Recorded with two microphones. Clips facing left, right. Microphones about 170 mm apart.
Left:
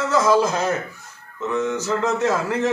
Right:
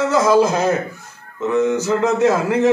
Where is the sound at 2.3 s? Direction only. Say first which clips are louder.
Right 5 dB; 15° right (ahead or behind).